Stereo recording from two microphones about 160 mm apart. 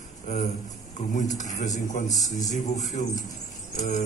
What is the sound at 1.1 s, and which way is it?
A man's voice, 50° left (ahead or behind).